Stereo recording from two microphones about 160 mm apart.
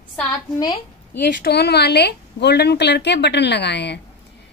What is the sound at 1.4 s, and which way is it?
A woman's voice, 90° left.